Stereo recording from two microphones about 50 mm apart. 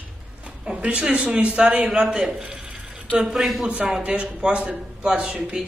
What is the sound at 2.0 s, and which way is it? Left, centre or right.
Speech, right.